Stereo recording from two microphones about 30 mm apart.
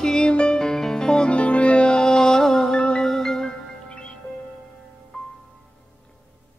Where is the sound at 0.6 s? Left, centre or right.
Centre.